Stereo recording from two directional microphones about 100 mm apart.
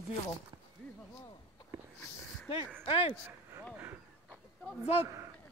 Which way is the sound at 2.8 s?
65° left (ahead or behind).